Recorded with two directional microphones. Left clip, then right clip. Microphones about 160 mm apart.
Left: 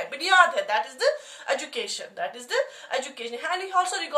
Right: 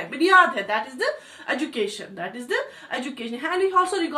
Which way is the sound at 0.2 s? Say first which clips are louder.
Right 3 dB; 20° left (ahead or behind).